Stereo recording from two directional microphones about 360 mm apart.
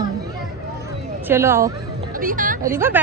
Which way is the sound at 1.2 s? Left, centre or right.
Centre.